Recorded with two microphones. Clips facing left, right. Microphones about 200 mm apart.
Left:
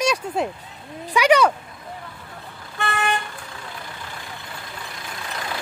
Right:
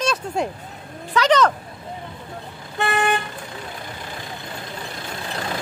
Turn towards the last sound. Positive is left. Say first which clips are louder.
# right 3 dB
turn(degrees=-30)  # may be behind; listen again after turning